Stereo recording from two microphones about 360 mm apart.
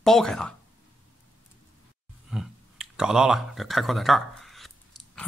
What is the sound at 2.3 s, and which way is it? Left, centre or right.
Speech, centre.